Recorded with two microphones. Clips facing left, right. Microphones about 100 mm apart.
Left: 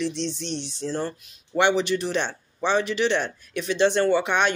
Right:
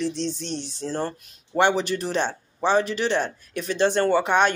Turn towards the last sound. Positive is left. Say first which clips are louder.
# right 1 dB
turn(degrees=-40)  # may be behind; listen again after turning